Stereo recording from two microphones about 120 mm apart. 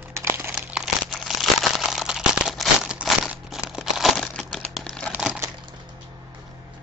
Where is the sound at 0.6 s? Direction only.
5° right (ahead or behind).